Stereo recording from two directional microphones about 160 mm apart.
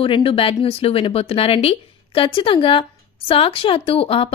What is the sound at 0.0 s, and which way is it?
Speech, 35° left (ahead or behind).